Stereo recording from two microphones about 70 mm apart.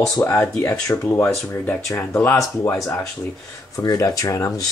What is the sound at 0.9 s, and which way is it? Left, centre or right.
Speech, left.